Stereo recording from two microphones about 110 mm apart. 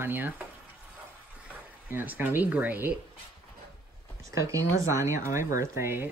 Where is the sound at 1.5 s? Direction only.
15° right (ahead or behind).